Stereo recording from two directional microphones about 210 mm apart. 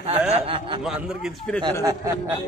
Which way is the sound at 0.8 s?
Centre (ahead or behind).